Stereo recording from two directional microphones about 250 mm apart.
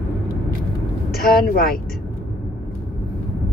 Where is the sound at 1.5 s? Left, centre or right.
Left.